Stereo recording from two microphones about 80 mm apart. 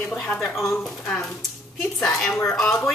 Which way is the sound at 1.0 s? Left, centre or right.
Centre.